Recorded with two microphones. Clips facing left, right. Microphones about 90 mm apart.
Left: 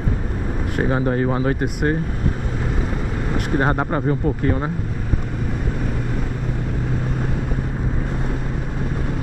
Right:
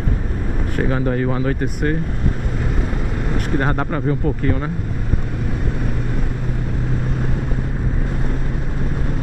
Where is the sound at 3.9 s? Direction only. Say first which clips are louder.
Even; 30° left (ahead or behind).